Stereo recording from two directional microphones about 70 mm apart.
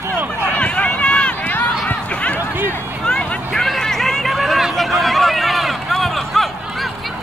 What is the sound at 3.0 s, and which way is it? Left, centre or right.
Vehicle, centre.